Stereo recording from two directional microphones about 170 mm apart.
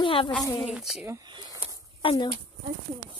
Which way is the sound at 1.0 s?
20° right (ahead or behind).